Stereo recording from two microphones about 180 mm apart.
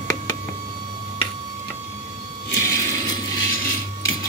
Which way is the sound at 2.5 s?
15° left (ahead or behind).